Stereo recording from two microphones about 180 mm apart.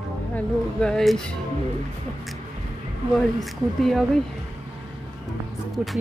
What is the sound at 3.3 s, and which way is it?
Speech, centre (ahead or behind).